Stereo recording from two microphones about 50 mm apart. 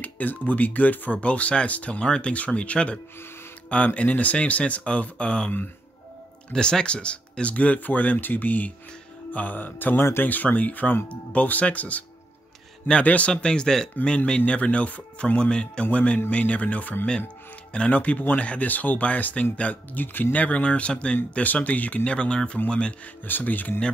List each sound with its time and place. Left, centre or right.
0.0 s speech: left
6.5 s speech: centre
13.0 s speech: left
20.3 s speech: left
22.0 s speech: left
23.2 s speech: left